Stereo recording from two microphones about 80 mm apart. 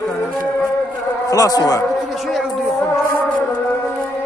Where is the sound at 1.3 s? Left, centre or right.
Left.